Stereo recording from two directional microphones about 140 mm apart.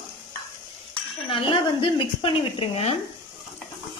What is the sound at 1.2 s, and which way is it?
A woman's voice, 40° left (ahead or behind).